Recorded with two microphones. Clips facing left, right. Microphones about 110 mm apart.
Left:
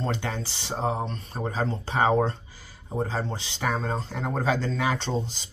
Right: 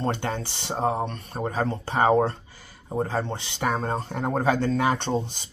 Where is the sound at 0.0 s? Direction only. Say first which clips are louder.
Right 3 dB; 50° right (ahead or behind).